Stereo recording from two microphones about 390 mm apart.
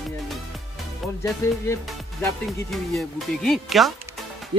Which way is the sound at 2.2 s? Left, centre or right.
Centre.